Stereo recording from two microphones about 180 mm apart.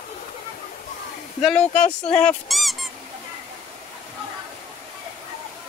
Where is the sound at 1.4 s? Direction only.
5° left (ahead or behind).